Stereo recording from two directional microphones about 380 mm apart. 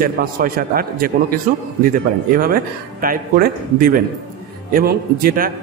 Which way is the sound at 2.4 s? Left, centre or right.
Right.